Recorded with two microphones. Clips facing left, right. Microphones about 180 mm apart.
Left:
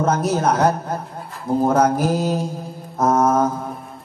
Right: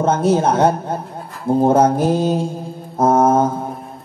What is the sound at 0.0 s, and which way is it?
A man's voice, 25° right (ahead or behind).